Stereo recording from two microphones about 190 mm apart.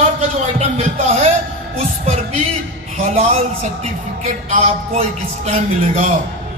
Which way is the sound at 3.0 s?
35° right (ahead or behind).